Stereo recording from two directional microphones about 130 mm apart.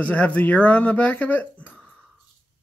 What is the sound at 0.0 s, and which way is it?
Speech, 10° left (ahead or behind).